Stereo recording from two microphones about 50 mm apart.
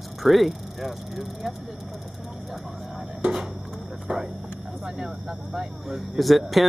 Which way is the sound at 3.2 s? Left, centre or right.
Centre.